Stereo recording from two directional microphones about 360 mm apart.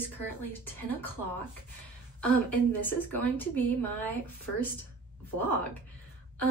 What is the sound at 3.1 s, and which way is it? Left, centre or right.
Speech, centre.